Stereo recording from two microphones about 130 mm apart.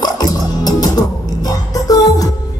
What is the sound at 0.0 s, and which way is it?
Music, 30° left (ahead or behind).